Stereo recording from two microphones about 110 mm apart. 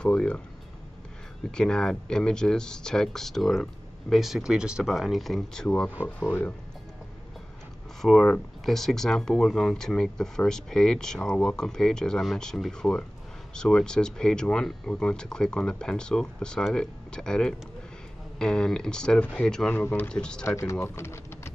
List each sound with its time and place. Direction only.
0.0 s speech: 10° left (ahead or behind)
1.5 s speech: 5° left (ahead or behind)
6.0 s speech: 15° left (ahead or behind)
8.0 s speech: 5° left (ahead or behind)
19.7 s speech: 20° left (ahead or behind)
20.1 s speech: 5° left (ahead or behind)
20.4 s speech: 25° left (ahead or behind)